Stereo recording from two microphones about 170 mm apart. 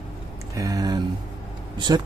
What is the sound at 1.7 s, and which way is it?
Speech, 25° right (ahead or behind).